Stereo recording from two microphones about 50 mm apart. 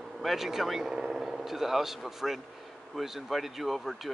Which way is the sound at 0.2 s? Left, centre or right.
Centre.